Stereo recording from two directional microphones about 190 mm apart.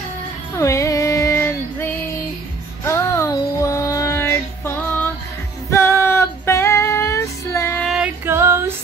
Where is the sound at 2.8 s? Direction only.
15° left (ahead or behind).